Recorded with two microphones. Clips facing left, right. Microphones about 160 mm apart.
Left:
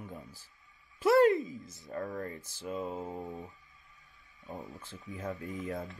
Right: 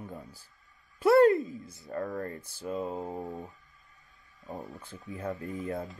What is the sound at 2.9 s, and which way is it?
Speech, 25° right (ahead or behind).